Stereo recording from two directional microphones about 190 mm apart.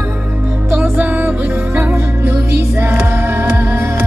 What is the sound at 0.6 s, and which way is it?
Music, 10° right (ahead or behind).